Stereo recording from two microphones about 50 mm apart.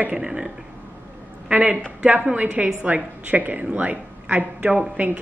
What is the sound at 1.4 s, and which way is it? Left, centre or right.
A woman's voice, right.